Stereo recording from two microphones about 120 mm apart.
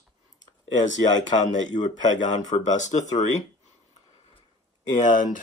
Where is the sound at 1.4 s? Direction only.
90° left.